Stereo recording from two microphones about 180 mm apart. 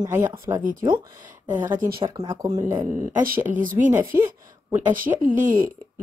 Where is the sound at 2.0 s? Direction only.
25° right (ahead or behind).